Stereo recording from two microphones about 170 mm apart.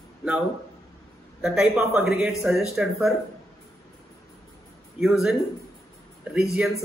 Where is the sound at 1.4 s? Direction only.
5° right (ahead or behind).